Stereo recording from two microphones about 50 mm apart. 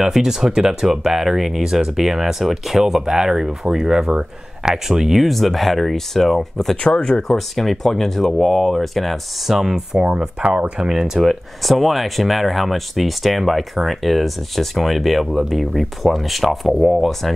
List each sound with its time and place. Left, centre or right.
0.0 s speech: centre
9.9 s speech: centre